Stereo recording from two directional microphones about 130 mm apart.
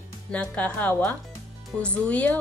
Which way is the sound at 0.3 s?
10° left (ahead or behind).